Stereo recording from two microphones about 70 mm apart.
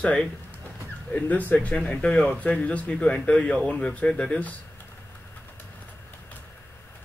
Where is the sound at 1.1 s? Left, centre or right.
Left.